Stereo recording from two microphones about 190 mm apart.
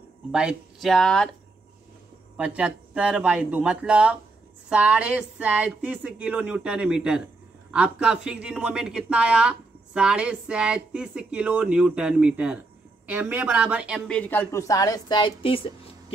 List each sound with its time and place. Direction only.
0.3 s speech: 5° right (ahead or behind)
2.3 s speech: 5° right (ahead or behind)
14.1 s a woman's voice: 10° left (ahead or behind); by 15.7 s 30° left (ahead or behind)